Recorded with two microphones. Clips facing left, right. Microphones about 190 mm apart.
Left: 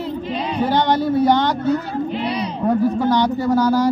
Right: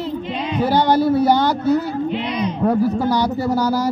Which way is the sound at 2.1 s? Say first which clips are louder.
Right 1 dB; 35° left (ahead or behind).